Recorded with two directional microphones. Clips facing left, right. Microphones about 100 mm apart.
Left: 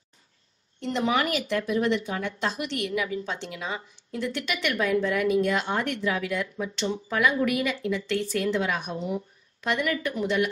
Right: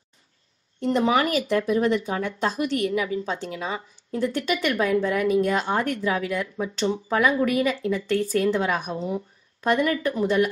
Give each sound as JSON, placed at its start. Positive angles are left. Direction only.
{"t": 0.7, "sound": "speech", "side_deg": -40}